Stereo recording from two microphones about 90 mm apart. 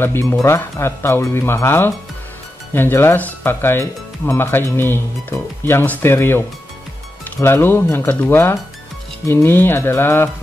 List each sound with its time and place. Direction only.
0.0 s speech: 25° left (ahead or behind)